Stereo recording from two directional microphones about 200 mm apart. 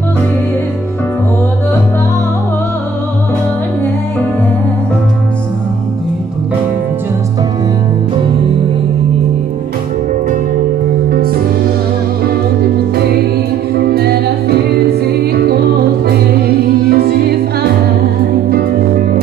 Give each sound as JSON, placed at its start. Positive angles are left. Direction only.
{"t": 11.1, "sound": "music", "side_deg": -50}
{"t": 13.7, "sound": "music", "side_deg": -50}